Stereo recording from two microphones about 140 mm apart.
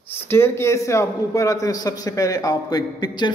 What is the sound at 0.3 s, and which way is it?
A man's voice, 20° left (ahead or behind).